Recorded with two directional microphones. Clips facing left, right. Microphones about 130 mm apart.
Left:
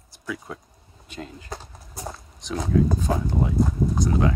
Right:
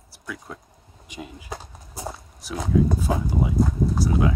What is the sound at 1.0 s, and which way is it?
Speech, 10° right (ahead or behind).